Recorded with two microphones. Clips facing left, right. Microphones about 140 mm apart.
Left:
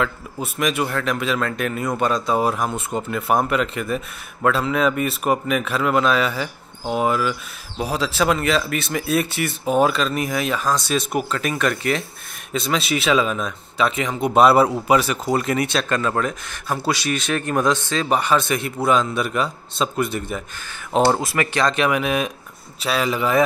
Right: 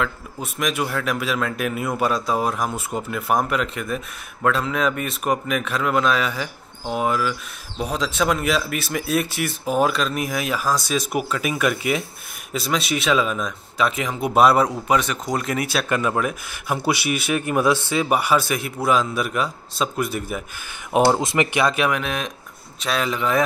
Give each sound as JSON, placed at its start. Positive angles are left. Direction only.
{"t": 0.0, "sound": "speech", "side_deg": 0}
{"t": 21.6, "sound": "speech", "side_deg": -5}